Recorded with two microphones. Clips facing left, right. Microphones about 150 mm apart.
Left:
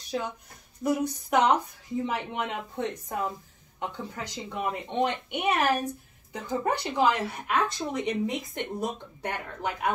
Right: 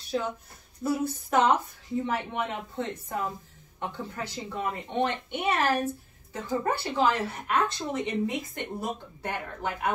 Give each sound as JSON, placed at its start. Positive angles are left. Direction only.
{"t": 0.8, "sound": "speech", "side_deg": 15}